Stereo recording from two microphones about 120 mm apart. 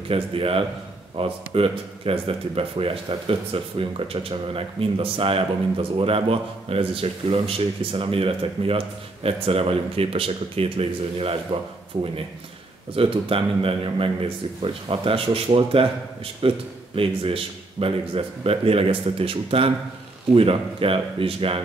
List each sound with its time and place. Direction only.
0.1 s speech: 50° right (ahead or behind)
12.9 s speech: 50° right (ahead or behind)